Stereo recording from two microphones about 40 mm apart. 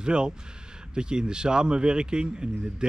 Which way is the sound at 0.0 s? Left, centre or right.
Right.